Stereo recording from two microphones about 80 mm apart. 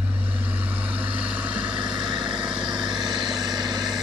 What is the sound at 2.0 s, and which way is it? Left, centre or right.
Vehicle, right.